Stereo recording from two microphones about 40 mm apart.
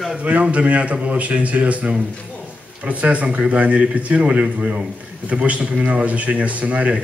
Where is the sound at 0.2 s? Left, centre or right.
Right.